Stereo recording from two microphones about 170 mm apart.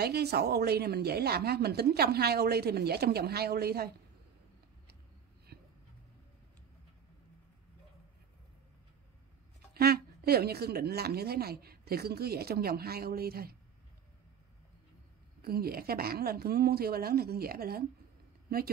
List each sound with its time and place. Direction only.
0.0 s a woman's voice: 70° right (ahead or behind)
9.8 s a woman's voice: 65° right (ahead or behind)
15.4 s a woman's voice: 65° right (ahead or behind)